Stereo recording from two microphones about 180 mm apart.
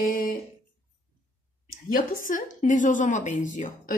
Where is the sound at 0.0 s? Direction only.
50° left (ahead or behind).